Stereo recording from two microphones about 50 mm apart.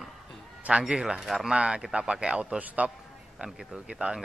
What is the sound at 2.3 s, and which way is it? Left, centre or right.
Speech, right.